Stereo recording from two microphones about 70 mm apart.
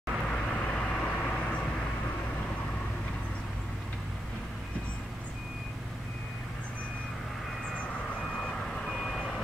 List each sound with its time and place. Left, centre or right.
0.3 s vehicle: centre
7.7 s reversing beeps: centre